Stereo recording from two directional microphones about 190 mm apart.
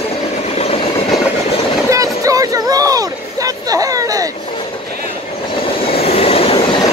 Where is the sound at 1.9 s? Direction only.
15° right (ahead or behind).